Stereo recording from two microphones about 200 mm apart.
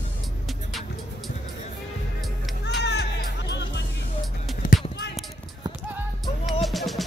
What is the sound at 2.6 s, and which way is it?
Music, 60° left (ahead or behind).